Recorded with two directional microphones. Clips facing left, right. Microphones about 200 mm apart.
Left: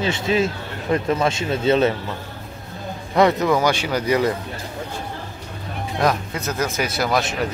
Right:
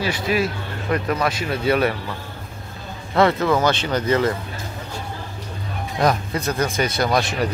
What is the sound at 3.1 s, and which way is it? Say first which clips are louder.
A man's voice: left 1 dB; 15° left (ahead or behind).